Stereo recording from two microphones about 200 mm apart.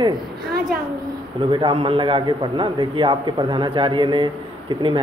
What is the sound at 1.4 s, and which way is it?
A man's voice, 25° right (ahead or behind).